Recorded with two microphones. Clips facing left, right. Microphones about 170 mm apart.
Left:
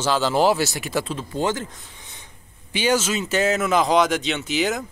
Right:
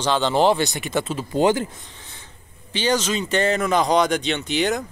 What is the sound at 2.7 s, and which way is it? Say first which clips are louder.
Speech: even; 10° left (ahead or behind).